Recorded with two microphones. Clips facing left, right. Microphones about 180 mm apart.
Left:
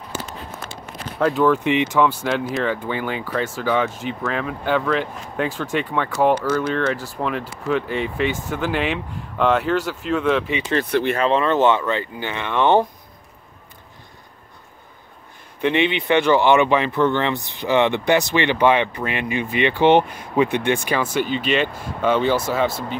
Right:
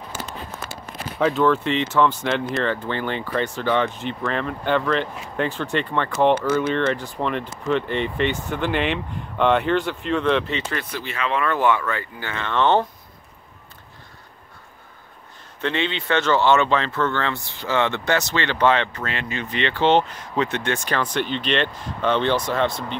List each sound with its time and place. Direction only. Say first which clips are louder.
1.3 s speech: left 4 dB; 10° left (ahead or behind)
6.3 s speech: even; 10° right (ahead or behind)
6.7 s speech: even; 5° left (ahead or behind)
10.9 s speech: left 12 dB; 60° left (ahead or behind)
11.1 s speech: left 2 dB; 30° left (ahead or behind); by 12.8 s 15° left (ahead or behind)
15.6 s speech: left 5 dB; 15° left (ahead or behind)